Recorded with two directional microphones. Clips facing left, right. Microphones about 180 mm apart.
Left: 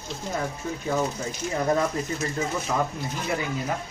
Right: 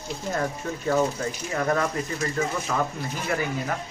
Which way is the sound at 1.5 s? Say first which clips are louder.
Left 1 dB; 15° left (ahead or behind).